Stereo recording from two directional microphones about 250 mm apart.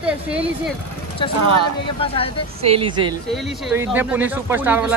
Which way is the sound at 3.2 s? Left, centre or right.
Centre.